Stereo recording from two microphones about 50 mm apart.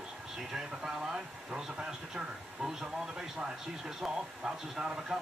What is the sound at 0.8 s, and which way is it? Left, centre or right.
Speech, centre.